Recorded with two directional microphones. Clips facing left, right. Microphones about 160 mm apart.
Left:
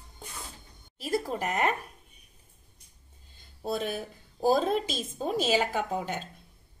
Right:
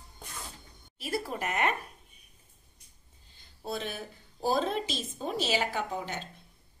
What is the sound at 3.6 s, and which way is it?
A woman's voice, 50° left (ahead or behind).